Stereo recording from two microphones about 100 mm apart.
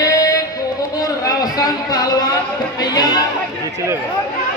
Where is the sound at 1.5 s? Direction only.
40° left (ahead or behind).